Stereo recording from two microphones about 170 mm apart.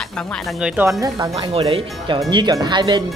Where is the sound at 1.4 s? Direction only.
35° right (ahead or behind).